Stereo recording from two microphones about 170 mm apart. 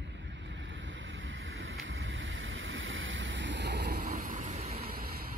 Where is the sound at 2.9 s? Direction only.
90° right; by 4.5 s 55° right (ahead or behind).